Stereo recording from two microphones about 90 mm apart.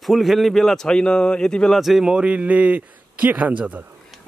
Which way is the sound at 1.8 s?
5° right (ahead or behind).